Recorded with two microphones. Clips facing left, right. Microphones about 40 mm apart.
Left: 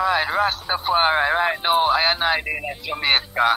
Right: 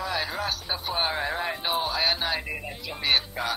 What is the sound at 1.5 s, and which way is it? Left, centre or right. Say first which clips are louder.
A man's voice: left 10 dB; left.